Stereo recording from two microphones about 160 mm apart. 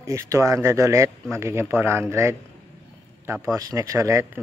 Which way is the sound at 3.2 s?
20° right (ahead or behind).